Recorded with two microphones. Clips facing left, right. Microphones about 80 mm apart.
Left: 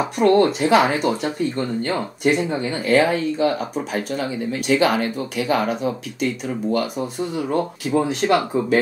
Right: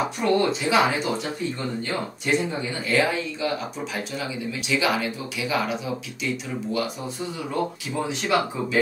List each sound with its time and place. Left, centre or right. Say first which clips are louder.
0.2 s speech: left 8 dB; left
7.3 s speech: left 5 dB; left